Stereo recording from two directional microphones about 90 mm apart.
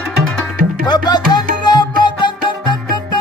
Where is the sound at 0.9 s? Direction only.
50° left (ahead or behind).